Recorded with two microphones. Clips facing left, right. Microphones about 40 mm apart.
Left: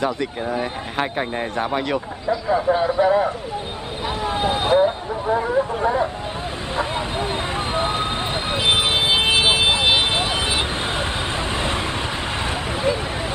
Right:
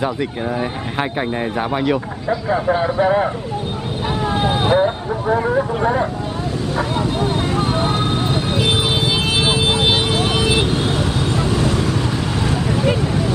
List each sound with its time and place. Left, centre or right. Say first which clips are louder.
0.0 s speech: right 2 dB; centre
4.6 s vehicle: even; centre
5.4 s speech: right 2 dB; right
6.8 s vehicle: right 3 dB; left
10.1 s vehicle: right 4 dB; left